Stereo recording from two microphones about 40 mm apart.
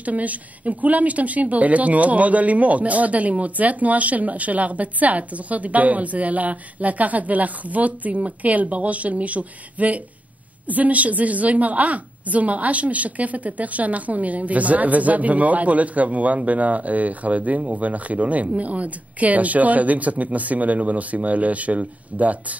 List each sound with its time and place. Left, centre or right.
0.0 s a woman's voice: right